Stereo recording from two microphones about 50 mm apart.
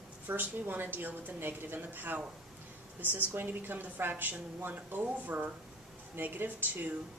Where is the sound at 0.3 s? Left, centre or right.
Right.